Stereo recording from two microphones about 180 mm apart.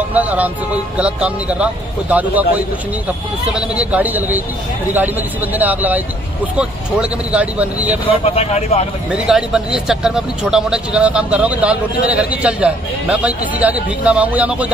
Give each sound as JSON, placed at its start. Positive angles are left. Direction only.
{"t": 0.1, "sound": "speech", "side_deg": -10}
{"t": 8.1, "sound": "speech", "side_deg": 35}
{"t": 9.1, "sound": "speech", "side_deg": -5}